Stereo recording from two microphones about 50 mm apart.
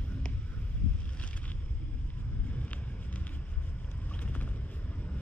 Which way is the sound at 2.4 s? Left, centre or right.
Left.